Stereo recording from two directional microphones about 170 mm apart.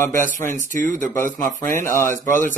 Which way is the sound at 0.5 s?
50° right (ahead or behind).